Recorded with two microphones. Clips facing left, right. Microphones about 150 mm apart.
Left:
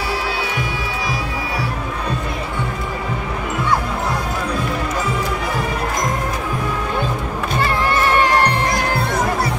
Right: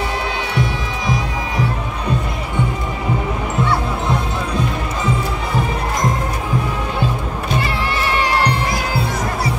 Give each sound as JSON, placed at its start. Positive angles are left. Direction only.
{"t": 7.6, "sound": "music", "side_deg": 45}